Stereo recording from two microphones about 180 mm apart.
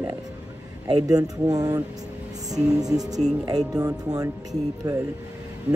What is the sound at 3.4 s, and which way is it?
Speech, 20° right (ahead or behind).